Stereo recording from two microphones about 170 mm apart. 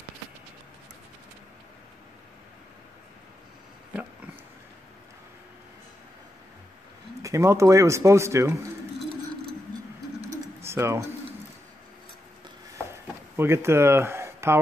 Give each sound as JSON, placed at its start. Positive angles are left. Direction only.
{"t": 7.2, "sound": "speech", "side_deg": -20}
{"t": 10.6, "sound": "speech", "side_deg": -15}
{"t": 13.4, "sound": "speech", "side_deg": -15}